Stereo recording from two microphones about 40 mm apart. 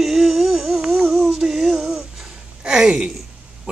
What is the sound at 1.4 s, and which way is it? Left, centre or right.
Music, centre.